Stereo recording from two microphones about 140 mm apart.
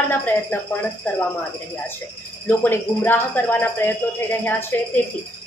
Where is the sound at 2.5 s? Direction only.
15° left (ahead or behind).